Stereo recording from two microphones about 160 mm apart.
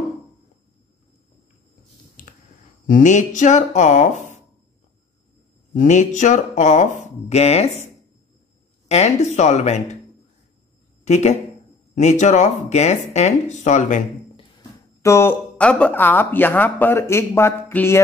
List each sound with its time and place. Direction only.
2.9 s speech: 50° left (ahead or behind)
5.8 s speech: 50° left (ahead or behind)
8.8 s speech: 45° left (ahead or behind)
11.1 s speech: 45° left (ahead or behind)
15.0 s speech: 15° left (ahead or behind)